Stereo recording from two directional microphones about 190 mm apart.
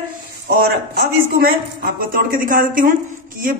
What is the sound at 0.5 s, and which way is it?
A woman's voice, 55° right (ahead or behind).